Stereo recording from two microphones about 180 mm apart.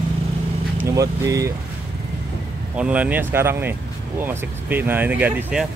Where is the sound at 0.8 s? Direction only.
20° right (ahead or behind).